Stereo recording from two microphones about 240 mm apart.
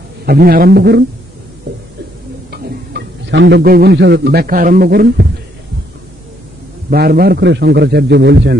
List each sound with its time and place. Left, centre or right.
0.2 s a man's voice: right
2.5 s speech: right
6.9 s a man's voice: right